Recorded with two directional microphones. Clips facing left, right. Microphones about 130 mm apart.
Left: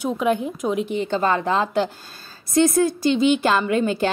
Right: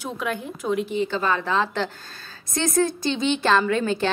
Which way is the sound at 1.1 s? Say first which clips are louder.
Left 4 dB; 45° left (ahead or behind).